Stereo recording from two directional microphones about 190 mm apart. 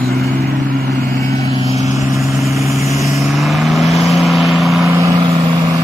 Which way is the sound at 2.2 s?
Centre (ahead or behind).